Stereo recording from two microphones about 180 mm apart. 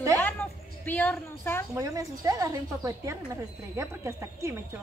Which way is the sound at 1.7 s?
20° right (ahead or behind).